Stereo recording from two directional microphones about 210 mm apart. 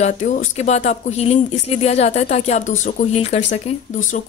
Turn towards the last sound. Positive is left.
turn(degrees=35)  # may be behind; listen again after turning